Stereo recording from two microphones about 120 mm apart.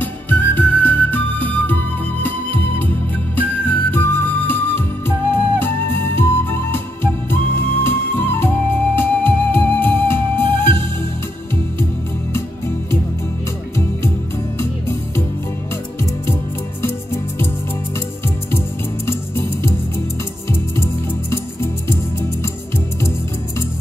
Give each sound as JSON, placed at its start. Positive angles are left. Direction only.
{"t": 0.0, "sound": "music", "side_deg": 15}
{"t": 3.9, "sound": "flute", "side_deg": 15}
{"t": 14.6, "sound": "music", "side_deg": 20}
{"t": 19.0, "sound": "music", "side_deg": 20}
{"t": 20.7, "sound": "music", "side_deg": 20}